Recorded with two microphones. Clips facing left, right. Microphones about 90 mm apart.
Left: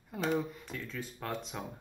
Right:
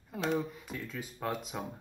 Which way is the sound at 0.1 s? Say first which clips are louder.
Even; centre (ahead or behind).